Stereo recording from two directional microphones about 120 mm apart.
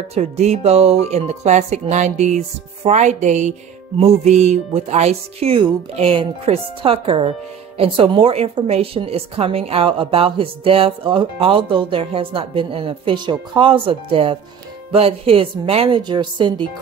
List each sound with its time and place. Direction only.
0.1 s speech: 70° right (ahead or behind)
4.2 s music: 70° right (ahead or behind)
5.9 s speech: 55° right (ahead or behind)
16.0 s a woman's voice: 40° right (ahead or behind)